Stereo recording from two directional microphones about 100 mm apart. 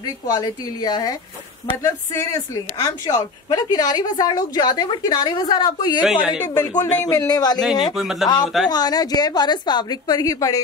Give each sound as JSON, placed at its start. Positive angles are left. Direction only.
{"t": 0.3, "sound": "speech", "side_deg": 40}
{"t": 6.0, "sound": "a woman's voice", "side_deg": -5}
{"t": 6.4, "sound": "speech", "side_deg": 35}
{"t": 7.9, "sound": "a man's voice", "side_deg": -5}
{"t": 8.6, "sound": "speech", "side_deg": 40}